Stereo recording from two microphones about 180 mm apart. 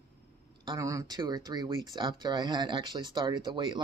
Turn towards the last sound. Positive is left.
turn(degrees=-25)  # may be behind; listen again after turning